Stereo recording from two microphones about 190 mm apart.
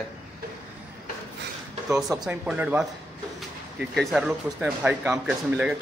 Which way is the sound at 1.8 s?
Centre (ahead or behind).